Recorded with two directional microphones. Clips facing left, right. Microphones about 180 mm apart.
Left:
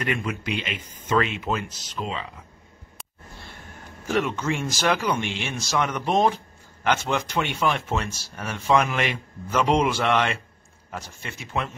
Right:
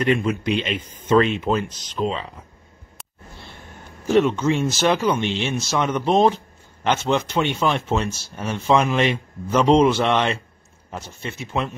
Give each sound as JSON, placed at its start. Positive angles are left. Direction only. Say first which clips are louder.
{"t": 0.0, "sound": "speech", "louder": "right 7 dB", "side_deg": -30}
{"t": 4.1, "sound": "speech", "louder": "right 7 dB", "side_deg": -25}